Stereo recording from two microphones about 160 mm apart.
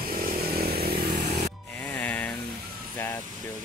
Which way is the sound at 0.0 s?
65° right (ahead or behind).